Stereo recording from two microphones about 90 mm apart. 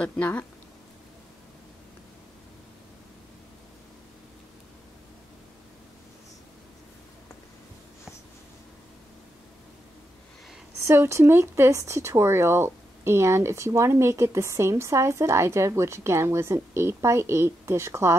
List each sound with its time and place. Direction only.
0.0 s speech: 15° left (ahead or behind)
10.8 s speech: 25° right (ahead or behind)